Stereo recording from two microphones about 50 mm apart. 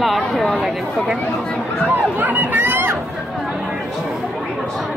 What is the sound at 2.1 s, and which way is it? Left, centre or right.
Speech, right.